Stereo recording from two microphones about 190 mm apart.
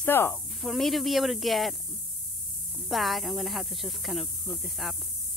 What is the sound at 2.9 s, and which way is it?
Speech, centre (ahead or behind).